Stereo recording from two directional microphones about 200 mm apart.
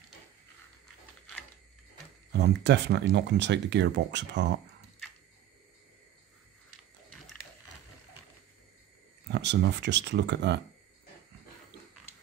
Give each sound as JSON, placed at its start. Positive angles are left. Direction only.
{"t": 2.3, "sound": "speech", "side_deg": -55}
{"t": 9.3, "sound": "speech", "side_deg": -60}